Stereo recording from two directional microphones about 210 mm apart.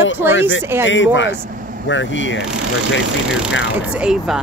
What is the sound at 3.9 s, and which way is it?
Speech, 5° right (ahead or behind).